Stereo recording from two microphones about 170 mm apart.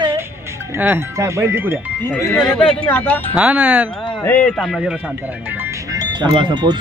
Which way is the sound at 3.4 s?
5° right (ahead or behind).